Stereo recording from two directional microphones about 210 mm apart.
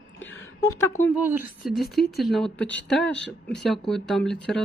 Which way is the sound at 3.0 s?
55° left (ahead or behind).